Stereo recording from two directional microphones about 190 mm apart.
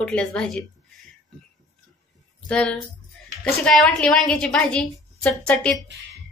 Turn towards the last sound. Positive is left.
turn(degrees=5)  # may be behind; listen again after turning